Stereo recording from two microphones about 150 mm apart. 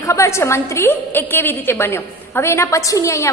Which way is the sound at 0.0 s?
20° left (ahead or behind).